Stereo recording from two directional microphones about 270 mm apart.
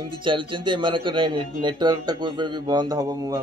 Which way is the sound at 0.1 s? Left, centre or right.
Centre.